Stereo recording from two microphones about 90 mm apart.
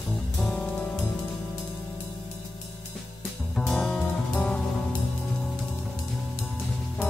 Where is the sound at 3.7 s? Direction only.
10° left (ahead or behind).